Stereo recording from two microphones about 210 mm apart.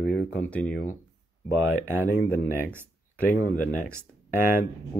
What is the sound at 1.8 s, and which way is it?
Speech, 10° right (ahead or behind).